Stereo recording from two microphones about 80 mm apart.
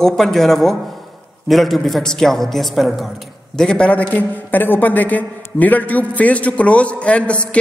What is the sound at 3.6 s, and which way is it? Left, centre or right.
A man's voice, centre.